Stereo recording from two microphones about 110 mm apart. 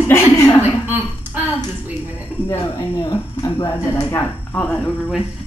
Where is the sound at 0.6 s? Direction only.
15° right (ahead or behind).